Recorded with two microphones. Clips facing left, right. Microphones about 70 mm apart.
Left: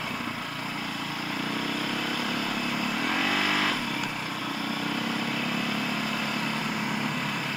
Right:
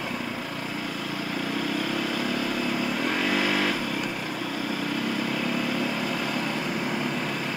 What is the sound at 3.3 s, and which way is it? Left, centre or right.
Vehicle, right.